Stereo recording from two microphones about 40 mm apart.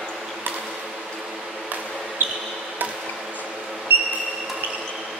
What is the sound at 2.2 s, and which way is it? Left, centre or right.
Basketball bounce, right.